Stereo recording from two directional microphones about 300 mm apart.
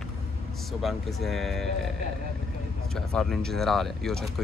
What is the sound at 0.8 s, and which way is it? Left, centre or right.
Speech, centre.